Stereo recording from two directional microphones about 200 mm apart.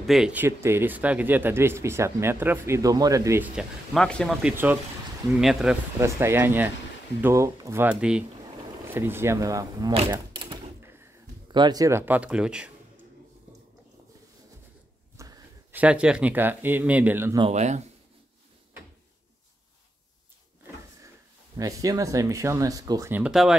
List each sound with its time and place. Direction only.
0.0 s speech: centre (ahead or behind)
3.5 s speech: centre (ahead or behind)
5.9 s speech: 15° right (ahead or behind)
9.9 s typewriter: 25° right (ahead or behind)
11.4 s speech: 20° right (ahead or behind); by 12.7 s 5° right (ahead or behind)
15.1 s a sound: 15° right (ahead or behind)
15.8 s speech: 5° right (ahead or behind)
17.4 s speech: 35° right (ahead or behind)
21.5 s speech: 15° right (ahead or behind)